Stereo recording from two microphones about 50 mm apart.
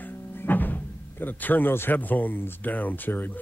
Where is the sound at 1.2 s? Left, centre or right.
Left.